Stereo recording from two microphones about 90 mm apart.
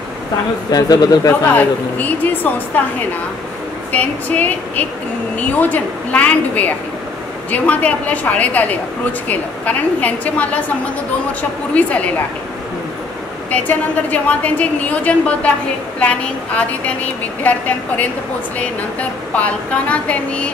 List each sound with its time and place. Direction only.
0.7 s speech: 45° left (ahead or behind)
1.4 s a woman's voice: 20° left (ahead or behind)
11.7 s a woman's voice: 15° left (ahead or behind)
13.5 s a woman's voice: 15° left (ahead or behind)